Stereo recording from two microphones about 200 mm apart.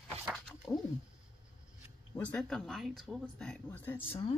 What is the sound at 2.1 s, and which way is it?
Speech, 5° left (ahead or behind).